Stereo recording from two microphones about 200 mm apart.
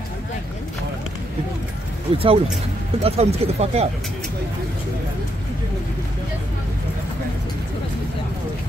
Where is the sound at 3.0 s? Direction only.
30° right (ahead or behind).